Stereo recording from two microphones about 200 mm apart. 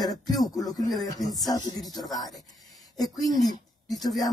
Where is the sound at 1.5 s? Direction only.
20° left (ahead or behind).